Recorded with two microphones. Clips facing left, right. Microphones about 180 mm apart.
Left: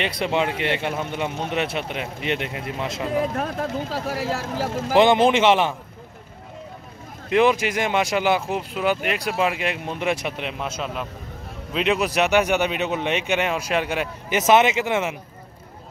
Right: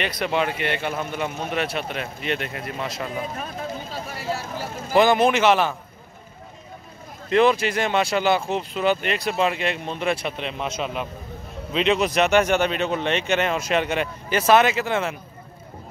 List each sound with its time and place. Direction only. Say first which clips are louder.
0.0 s a man's voice: left 1 dB; 25° left (ahead or behind)
3.2 s speech: left 6 dB; 80° left
4.9 s a man's voice: left 1 dB; 25° left (ahead or behind)
7.2 s speech: even; 15° left (ahead or behind)
11.7 s speech: right 1 dB; 5° left (ahead or behind)
14.3 s a man's voice: even; 20° left (ahead or behind)